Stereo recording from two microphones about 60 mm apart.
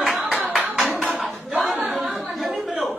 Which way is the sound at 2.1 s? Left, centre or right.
Centre.